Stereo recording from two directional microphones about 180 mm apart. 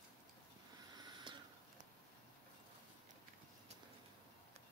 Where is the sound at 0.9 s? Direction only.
25° right (ahead or behind).